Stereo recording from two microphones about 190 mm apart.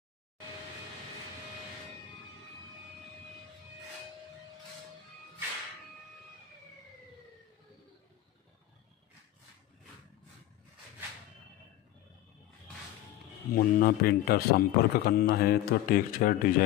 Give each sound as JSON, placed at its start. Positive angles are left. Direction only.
{"t": 13.5, "sound": "a man's voice", "side_deg": 50}